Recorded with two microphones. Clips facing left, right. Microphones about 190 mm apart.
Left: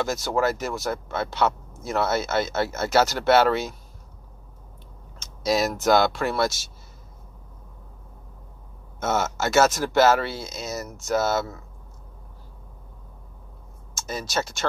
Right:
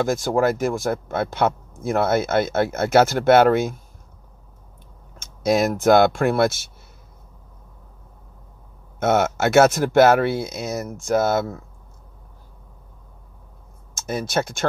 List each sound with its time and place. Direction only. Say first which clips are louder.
0.0 s speech: right 4 dB; 50° right (ahead or behind)
5.2 s speech: right 4 dB; 55° right (ahead or behind)
9.0 s speech: right 6 dB; 60° right (ahead or behind)
13.9 s speech: right 5 dB; 55° right (ahead or behind)